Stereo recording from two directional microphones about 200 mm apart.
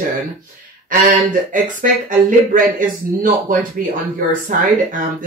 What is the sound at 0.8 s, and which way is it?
Speech, 40° right (ahead or behind).